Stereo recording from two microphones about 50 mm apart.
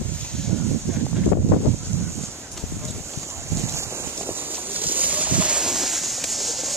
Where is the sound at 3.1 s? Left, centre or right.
Right.